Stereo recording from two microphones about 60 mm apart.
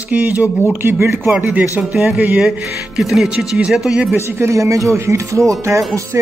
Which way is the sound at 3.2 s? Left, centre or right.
Centre.